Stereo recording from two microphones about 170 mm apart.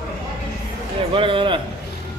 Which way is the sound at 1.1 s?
30° right (ahead or behind).